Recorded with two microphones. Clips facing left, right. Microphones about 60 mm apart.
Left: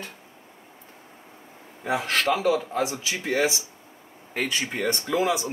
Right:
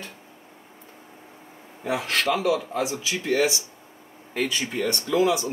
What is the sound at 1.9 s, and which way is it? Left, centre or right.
Speech, left.